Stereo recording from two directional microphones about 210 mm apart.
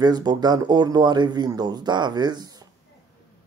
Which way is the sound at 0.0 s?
20° right (ahead or behind).